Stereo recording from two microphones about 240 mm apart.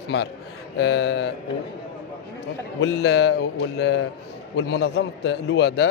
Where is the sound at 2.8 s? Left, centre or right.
Left.